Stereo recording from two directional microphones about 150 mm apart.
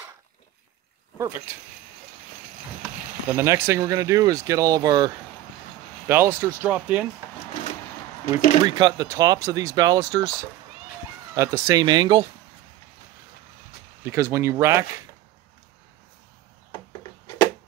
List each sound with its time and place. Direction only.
1.1 s speech: 20° right (ahead or behind)
3.3 s speech: 15° right (ahead or behind)
6.0 s speech: 15° right (ahead or behind)
8.6 s speech: 25° right (ahead or behind)
11.3 s speech: 20° right (ahead or behind)
14.0 s speech: 15° right (ahead or behind)